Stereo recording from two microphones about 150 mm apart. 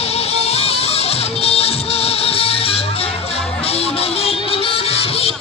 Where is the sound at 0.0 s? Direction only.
40° left (ahead or behind).